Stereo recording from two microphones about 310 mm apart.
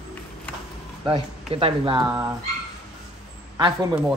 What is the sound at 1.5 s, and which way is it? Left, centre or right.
Speech, centre.